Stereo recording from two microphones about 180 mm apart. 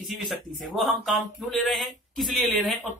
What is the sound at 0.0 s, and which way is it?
Speech, centre (ahead or behind).